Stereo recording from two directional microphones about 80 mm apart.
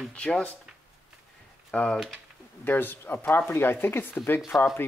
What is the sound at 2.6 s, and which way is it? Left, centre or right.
Speech, left.